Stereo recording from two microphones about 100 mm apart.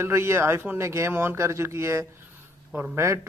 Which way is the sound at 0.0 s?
25° right (ahead or behind).